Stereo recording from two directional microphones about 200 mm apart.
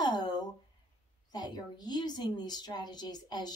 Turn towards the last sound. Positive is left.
turn(degrees=20)  # may be behind; listen again after turning